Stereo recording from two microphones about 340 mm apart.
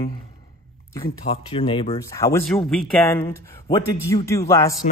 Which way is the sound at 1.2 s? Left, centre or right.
Centre.